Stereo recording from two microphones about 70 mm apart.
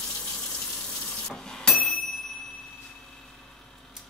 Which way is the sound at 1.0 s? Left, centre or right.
Centre.